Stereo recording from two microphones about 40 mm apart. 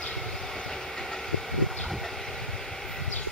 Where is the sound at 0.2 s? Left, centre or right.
Centre.